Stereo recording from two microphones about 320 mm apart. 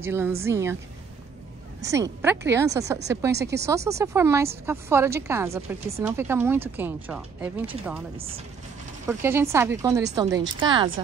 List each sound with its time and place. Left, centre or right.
0.0 s speech: centre
1.8 s a woman's voice: centre
3.3 s speech: right
3.6 s speech: centre
9.0 s speech: centre